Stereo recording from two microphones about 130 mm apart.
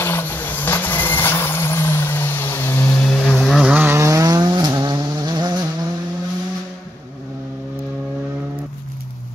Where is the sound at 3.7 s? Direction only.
20° right (ahead or behind).